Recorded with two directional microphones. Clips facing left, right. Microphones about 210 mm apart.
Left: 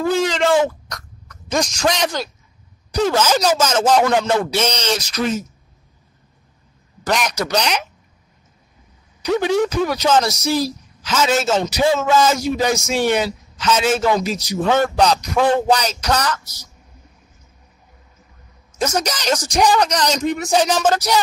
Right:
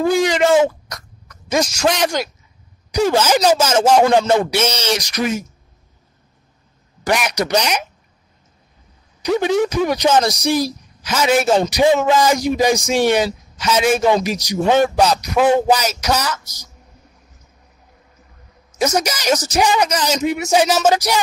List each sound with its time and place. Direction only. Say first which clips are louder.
0.0 s speech: right 3 dB; 15° right (ahead or behind)
4.0 s speech: right 3 dB; 30° right (ahead or behind)
4.3 s speech: right 2 dB; 10° right (ahead or behind)
7.1 s speech: right 2 dB; 10° right (ahead or behind)
9.8 s a woman's voice: right 2 dB; 15° right (ahead or behind)
18.8 s speech: right 2 dB; 10° right (ahead or behind)